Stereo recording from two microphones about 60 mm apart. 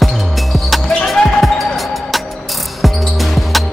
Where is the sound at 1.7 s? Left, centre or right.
Centre.